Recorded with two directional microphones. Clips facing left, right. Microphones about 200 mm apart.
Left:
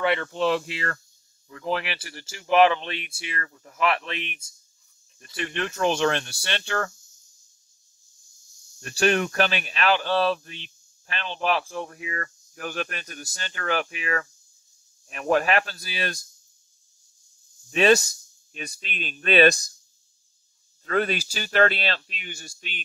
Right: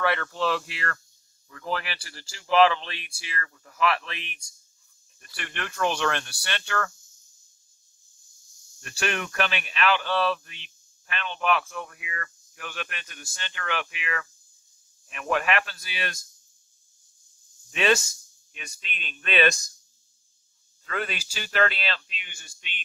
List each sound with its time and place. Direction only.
0.0 s speech: 20° left (ahead or behind)
5.2 s speech: 25° left (ahead or behind)
8.7 s speech: 35° left (ahead or behind)
17.6 s speech: 40° left (ahead or behind)
20.8 s speech: 40° left (ahead or behind)